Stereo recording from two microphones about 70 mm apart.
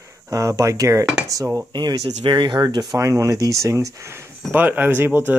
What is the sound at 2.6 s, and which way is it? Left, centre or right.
Speech, right.